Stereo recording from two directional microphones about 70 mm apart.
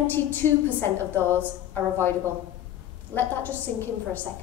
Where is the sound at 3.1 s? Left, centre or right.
Left.